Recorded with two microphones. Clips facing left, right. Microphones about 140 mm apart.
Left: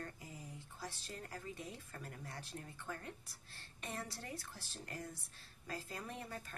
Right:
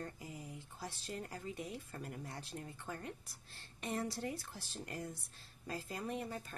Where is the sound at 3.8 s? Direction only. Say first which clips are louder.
Right 7 dB; 20° right (ahead or behind).